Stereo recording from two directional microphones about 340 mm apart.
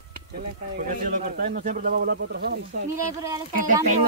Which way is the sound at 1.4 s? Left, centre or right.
Right.